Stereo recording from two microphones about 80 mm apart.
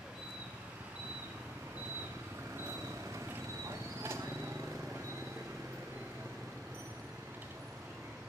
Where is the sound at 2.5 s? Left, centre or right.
Right.